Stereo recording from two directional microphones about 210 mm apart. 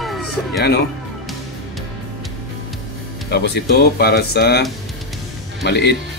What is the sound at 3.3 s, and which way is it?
Speech, 50° left (ahead or behind).